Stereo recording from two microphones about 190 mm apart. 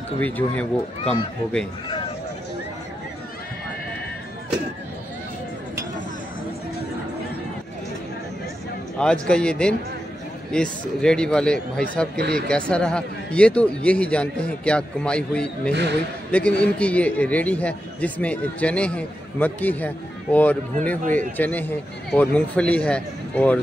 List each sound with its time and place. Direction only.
0.2 s speech: 10° left (ahead or behind)
8.9 s speech: 5° left (ahead or behind)
12.2 s speech: 55° right (ahead or behind)
12.4 s a man's voice: 5° left (ahead or behind)